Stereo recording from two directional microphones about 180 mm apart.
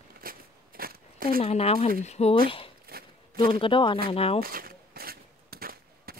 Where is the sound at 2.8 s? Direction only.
55° right (ahead or behind).